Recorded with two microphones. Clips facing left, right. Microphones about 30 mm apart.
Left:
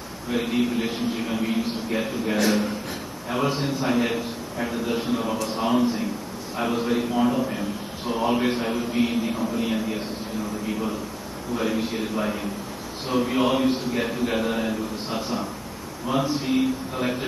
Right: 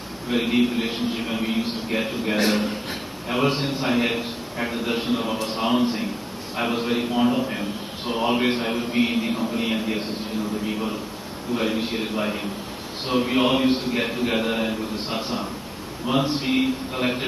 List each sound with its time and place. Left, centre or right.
0.3 s a man's voice: right